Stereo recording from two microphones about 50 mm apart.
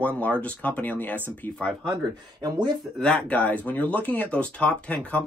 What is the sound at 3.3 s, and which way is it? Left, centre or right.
Speech, left.